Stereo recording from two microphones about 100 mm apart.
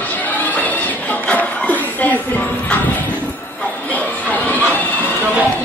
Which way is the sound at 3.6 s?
15° left (ahead or behind).